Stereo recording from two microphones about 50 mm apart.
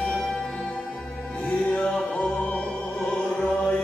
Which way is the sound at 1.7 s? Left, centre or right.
Centre.